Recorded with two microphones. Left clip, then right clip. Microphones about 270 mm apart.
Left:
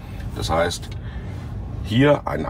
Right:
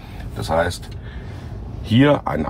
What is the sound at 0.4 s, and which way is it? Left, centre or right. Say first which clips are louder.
Speech: right 1 dB; centre.